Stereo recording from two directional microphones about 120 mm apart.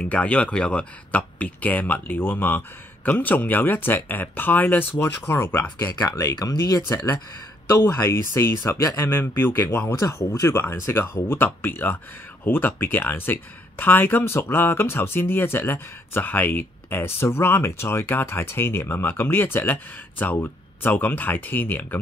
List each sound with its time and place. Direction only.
0.0 s speech: 10° left (ahead or behind)